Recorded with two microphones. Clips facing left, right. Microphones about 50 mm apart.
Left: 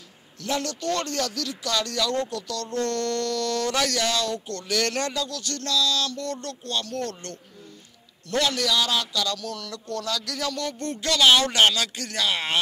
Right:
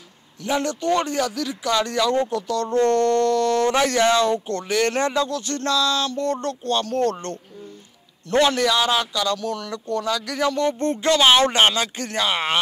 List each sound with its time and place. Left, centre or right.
0.4 s a man's voice: centre